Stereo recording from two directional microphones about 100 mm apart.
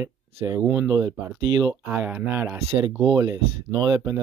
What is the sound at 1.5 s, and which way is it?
Speech, 45° right (ahead or behind).